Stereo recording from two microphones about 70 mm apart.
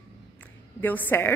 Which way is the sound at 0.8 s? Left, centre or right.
Left.